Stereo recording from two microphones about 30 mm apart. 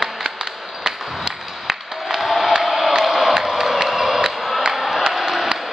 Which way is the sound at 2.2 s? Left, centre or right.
Centre.